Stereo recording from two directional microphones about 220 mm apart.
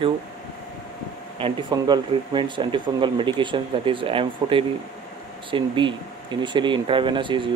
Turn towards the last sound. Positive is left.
turn(degrees=-20)  # may be behind; listen again after turning